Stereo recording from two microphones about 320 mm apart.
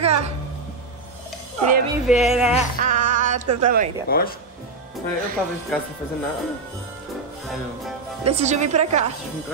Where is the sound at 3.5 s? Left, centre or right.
Right.